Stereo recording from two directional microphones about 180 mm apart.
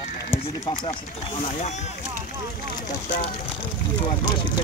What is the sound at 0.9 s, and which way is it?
Speech, 35° left (ahead or behind).